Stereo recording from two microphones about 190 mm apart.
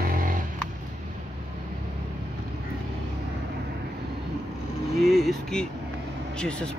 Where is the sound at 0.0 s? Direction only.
50° right (ahead or behind).